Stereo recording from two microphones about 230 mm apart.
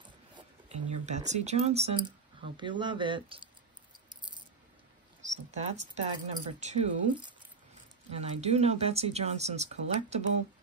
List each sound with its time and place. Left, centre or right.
0.7 s speech: right
5.3 s speech: right